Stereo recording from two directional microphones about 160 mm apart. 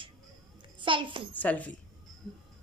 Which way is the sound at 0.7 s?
30° right (ahead or behind).